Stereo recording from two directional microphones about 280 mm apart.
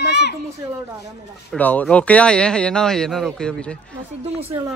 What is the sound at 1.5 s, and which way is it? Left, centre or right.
Speech, centre.